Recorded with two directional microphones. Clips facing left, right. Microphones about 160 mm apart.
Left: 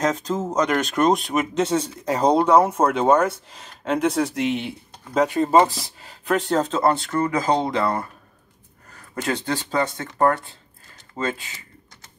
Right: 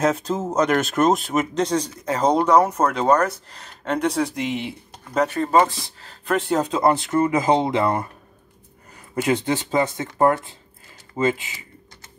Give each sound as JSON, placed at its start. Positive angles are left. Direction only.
{"t": 0.0, "sound": "speech", "side_deg": -10}
{"t": 5.2, "sound": "speech", "side_deg": 15}
{"t": 6.0, "sound": "speech", "side_deg": 0}